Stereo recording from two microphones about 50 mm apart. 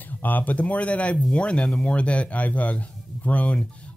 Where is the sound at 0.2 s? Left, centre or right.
Left.